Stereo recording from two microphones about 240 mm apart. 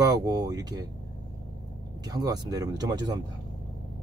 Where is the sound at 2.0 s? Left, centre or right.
Centre.